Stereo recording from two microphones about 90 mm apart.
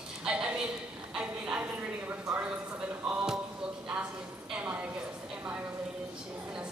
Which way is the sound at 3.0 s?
5° right (ahead or behind).